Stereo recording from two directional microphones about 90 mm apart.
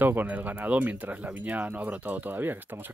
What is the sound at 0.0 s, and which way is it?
Speech, 20° right (ahead or behind).